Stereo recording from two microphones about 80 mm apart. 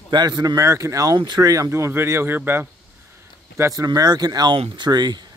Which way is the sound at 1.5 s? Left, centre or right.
Right.